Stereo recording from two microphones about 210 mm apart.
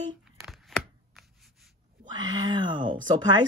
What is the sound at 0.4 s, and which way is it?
Chopping, centre (ahead or behind).